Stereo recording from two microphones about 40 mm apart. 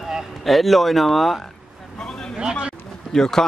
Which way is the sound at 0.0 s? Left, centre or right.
Centre.